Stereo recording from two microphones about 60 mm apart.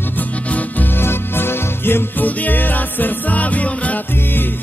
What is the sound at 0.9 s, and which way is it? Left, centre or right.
Music, left.